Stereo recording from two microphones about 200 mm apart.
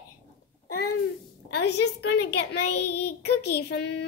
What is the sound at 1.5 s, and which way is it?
A child's voice, 55° left (ahead or behind).